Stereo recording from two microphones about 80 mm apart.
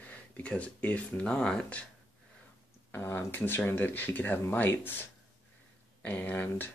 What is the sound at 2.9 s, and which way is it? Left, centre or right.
Speech, left.